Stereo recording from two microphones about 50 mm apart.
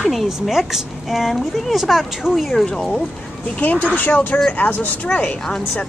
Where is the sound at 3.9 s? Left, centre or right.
Left.